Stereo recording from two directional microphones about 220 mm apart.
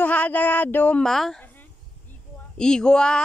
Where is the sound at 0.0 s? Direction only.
5° left (ahead or behind).